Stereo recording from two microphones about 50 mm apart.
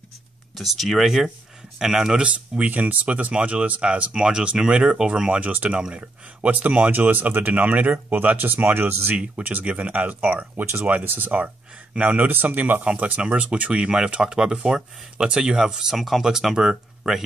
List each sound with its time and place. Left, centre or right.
0.6 s speech: centre
2.2 s speech: right
5.4 s speech: right
5.8 s speech: centre
6.4 s speech: right
9.7 s speech: right
10.6 s speech: right
12.3 s speech: right
12.8 s speech: right; by 17.2 s centre